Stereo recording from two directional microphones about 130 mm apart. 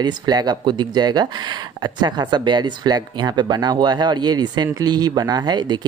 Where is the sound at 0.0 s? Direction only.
30° right (ahead or behind).